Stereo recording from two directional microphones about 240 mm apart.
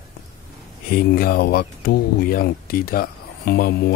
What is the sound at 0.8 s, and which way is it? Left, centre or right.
Speech, left.